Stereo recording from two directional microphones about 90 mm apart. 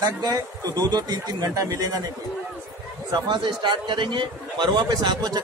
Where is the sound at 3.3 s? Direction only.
60° right (ahead or behind).